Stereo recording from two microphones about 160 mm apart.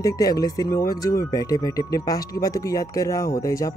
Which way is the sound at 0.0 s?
25° left (ahead or behind).